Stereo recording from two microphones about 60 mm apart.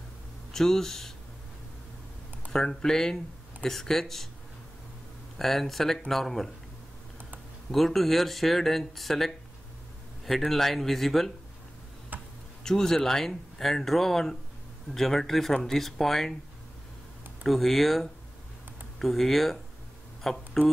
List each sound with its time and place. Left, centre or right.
0.5 s speech: centre
2.5 s speech: centre
5.4 s speech: centre
7.7 s speech: centre
12.1 s tick-tock: right
12.6 s speech: centre
17.5 s speech: centre